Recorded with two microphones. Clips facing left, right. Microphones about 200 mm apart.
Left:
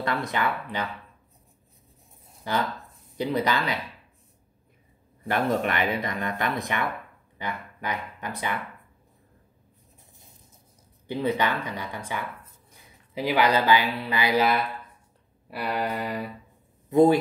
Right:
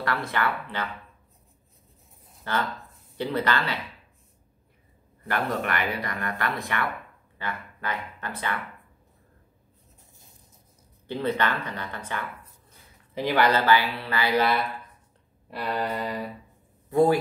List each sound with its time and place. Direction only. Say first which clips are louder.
0.0 s speech: left 1 dB; 20° left (ahead or behind)
2.4 s speech: left 1 dB; 15° left (ahead or behind)
5.3 s speech: left 3 dB; 20° left (ahead or behind)
11.1 s speech: left 1 dB; 10° left (ahead or behind)
15.5 s speech: even; 10° left (ahead or behind)